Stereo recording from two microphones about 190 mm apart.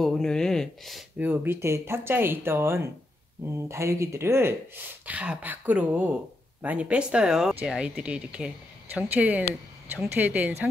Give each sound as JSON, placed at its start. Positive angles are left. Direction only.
{"t": 0.0, "sound": "speech", "side_deg": 5}